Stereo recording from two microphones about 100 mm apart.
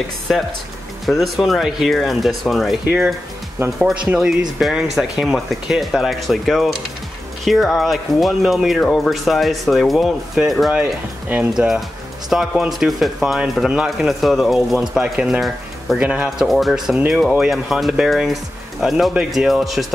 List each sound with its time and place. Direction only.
0.3 s speech: centre (ahead or behind)
3.8 s speech: 10° right (ahead or behind)
10.7 s speech: 15° right (ahead or behind)
11.5 s speech: 5° right (ahead or behind)
15.0 s speech: 15° right (ahead or behind)
16.4 s speech: centre (ahead or behind)